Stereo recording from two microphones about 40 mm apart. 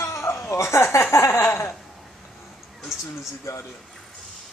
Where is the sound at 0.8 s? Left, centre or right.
Left.